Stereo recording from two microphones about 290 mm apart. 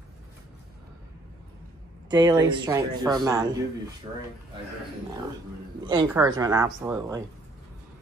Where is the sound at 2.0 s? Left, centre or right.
Centre.